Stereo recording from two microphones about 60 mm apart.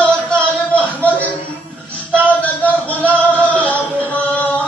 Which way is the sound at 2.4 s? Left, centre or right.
Left.